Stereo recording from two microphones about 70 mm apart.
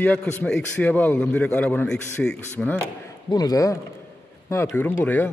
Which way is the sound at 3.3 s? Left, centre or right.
Left.